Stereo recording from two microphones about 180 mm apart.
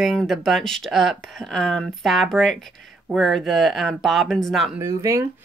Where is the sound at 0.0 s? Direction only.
Centre (ahead or behind).